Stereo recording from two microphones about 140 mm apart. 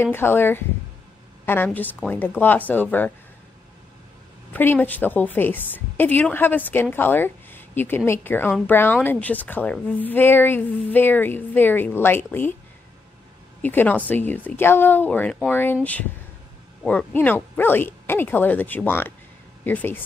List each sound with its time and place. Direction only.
0.0 s a woman's voice: 15° left (ahead or behind)
4.5 s a woman's voice: 15° left (ahead or behind)
13.6 s a woman's voice: 15° left (ahead or behind)